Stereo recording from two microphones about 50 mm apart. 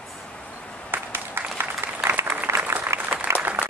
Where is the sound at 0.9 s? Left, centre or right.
Right.